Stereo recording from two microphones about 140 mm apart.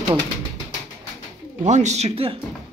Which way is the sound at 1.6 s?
55° right (ahead or behind).